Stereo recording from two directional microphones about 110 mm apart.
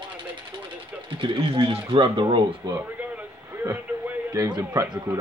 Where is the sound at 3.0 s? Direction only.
15° right (ahead or behind).